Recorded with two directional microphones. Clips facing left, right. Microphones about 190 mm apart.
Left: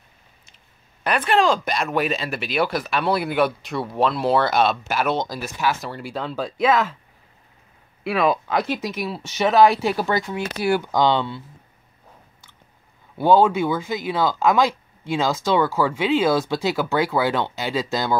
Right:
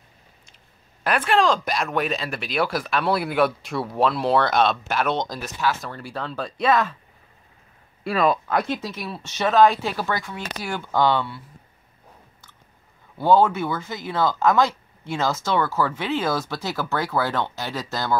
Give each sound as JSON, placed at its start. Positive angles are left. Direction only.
{"t": 1.0, "sound": "speech", "side_deg": 0}
{"t": 8.0, "sound": "speech", "side_deg": 5}
{"t": 13.2, "sound": "speech", "side_deg": 15}